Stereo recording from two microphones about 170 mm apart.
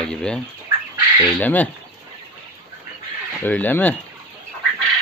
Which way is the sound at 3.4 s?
10° left (ahead or behind).